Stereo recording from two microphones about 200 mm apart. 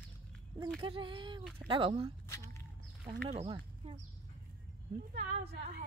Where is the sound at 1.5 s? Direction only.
25° right (ahead or behind).